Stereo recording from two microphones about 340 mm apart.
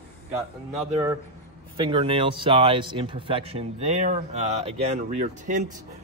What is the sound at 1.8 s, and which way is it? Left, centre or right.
Speech, centre.